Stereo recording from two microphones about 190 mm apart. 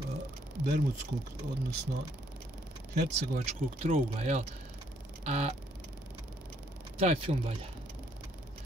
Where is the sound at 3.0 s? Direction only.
35° right (ahead or behind).